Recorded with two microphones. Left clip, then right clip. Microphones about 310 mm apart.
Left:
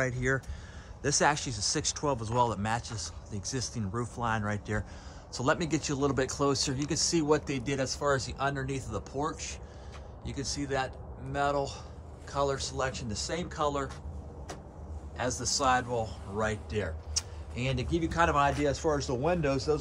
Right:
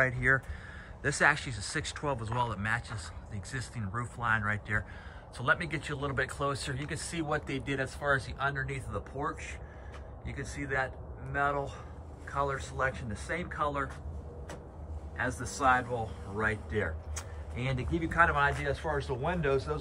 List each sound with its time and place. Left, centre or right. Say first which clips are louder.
0.0 s speech: right 3 dB; centre
15.1 s speech: left 3 dB; centre